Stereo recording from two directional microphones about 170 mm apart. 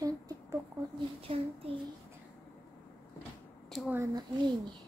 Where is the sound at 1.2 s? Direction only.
35° right (ahead or behind).